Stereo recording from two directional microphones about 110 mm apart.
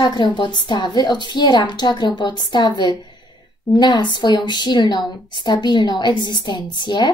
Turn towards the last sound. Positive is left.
turn(degrees=45)  # may be behind; listen again after turning